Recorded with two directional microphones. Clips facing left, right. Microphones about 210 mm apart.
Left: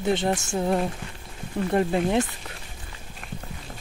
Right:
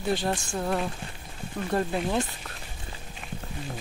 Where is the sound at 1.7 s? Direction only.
20° left (ahead or behind).